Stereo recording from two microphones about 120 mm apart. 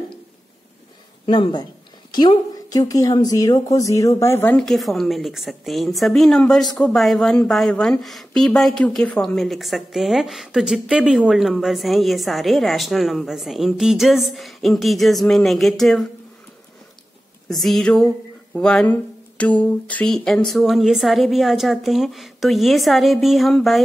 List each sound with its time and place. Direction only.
1.2 s a woman's voice: 40° left (ahead or behind); by 4.6 s 20° left (ahead or behind)
4.6 s a woman's voice: centre (ahead or behind)
17.5 s a woman's voice: centre (ahead or behind)